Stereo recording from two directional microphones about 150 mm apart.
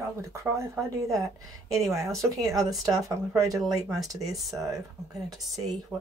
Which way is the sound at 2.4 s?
25° right (ahead or behind).